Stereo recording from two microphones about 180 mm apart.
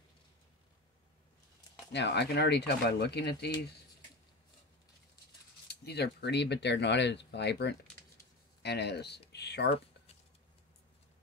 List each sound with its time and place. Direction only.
1.9 s speech: 75° left (ahead or behind)
5.7 s speech: 65° left (ahead or behind)